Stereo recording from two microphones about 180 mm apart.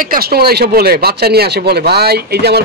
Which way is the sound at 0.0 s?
55° right (ahead or behind).